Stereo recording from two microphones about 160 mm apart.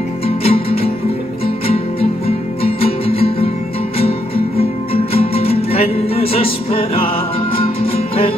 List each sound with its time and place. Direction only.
0.4 s music: 35° left (ahead or behind)
4.6 s music: 35° left (ahead or behind)